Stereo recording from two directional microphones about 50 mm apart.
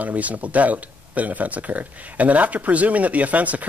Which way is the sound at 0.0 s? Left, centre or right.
Right.